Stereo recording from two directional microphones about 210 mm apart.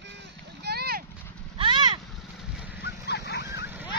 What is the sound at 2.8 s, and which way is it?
Dog, 50° left (ahead or behind).